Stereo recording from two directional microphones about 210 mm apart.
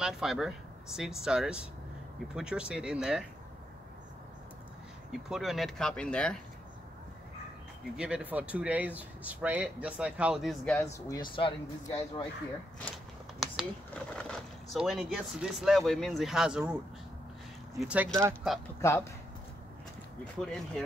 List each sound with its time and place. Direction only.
0.0 s speech: centre (ahead or behind)
5.1 s speech: centre (ahead or behind)
7.9 s speech: 5° right (ahead or behind)
10.9 s speech: 20° left (ahead or behind)
12.9 s a sound: centre (ahead or behind)
14.7 s speech: centre (ahead or behind)
17.7 s speech: 5° right (ahead or behind)
18.8 s speech: 15° left (ahead or behind)
20.3 s speech: centre (ahead or behind)